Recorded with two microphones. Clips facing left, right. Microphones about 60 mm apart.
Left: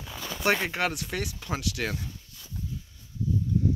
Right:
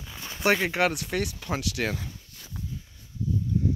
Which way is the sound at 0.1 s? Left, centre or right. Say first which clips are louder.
Right 2 dB; centre.